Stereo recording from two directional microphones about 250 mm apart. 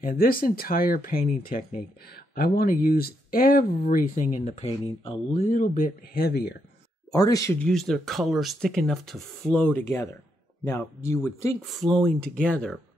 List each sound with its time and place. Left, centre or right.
0.0 s speech: left
7.1 s speech: centre
7.6 s speech: centre
11.6 s speech: centre